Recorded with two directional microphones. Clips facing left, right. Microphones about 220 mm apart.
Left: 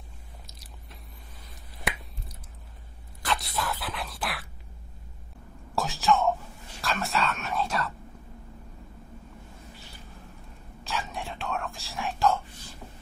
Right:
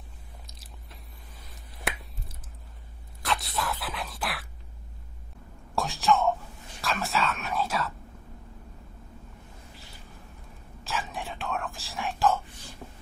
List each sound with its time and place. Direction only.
1.9 s a sound: centre (ahead or behind)
5.8 s whispering: centre (ahead or behind)
10.8 s whispering: centre (ahead or behind)